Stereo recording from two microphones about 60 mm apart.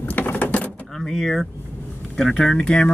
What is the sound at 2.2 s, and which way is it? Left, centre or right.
Speech, centre.